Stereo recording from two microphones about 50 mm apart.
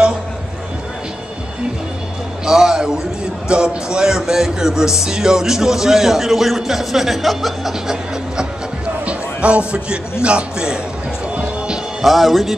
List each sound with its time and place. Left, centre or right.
2.4 s a sound: centre
3.4 s a man's voice: centre
9.0 s music: right
10.2 s a man's voice: centre
11.3 s music: centre
12.0 s a man's voice: centre